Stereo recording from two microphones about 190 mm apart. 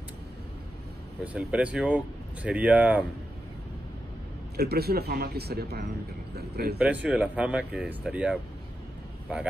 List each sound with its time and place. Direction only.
1.2 s speech: 5° right (ahead or behind)
4.6 s a man's voice: 55° right (ahead or behind)
6.8 s speech: 5° right (ahead or behind)